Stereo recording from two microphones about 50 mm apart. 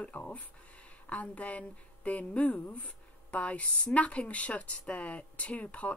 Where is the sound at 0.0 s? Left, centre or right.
Left.